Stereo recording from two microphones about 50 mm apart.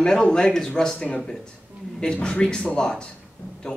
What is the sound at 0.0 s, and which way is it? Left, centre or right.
A man's voice, centre.